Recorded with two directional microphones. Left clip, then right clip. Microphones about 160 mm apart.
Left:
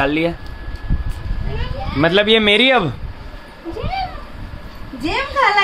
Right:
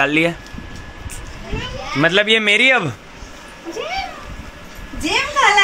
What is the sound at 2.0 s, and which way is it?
Speech, 15° left (ahead or behind).